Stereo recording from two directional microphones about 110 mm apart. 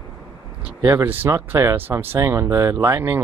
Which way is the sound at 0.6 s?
15° right (ahead or behind).